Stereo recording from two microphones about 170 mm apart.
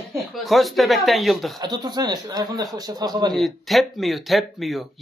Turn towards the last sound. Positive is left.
turn(degrees=0)  # may be behind; listen again after turning